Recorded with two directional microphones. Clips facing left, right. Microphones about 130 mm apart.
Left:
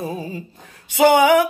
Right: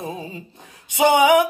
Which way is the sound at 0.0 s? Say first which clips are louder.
Left 3 dB; 25° right (ahead or behind).